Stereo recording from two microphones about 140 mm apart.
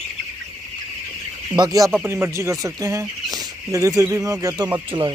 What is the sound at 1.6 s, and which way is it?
Speech, 25° right (ahead or behind).